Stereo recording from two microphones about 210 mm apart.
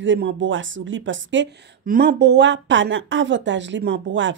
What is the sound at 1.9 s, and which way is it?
Speech, 45° right (ahead or behind).